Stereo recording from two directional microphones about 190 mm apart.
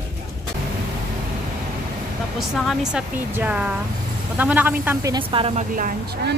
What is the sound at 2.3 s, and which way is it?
Speech, centre (ahead or behind).